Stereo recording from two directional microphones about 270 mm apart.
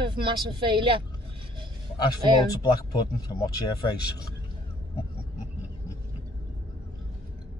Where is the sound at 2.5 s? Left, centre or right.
Centre.